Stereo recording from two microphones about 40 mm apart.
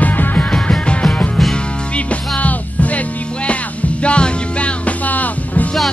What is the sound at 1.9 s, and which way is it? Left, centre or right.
Music, left.